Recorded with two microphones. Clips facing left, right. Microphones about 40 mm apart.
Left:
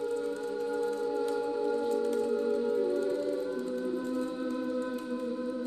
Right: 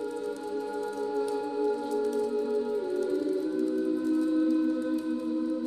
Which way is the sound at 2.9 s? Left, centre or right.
Left.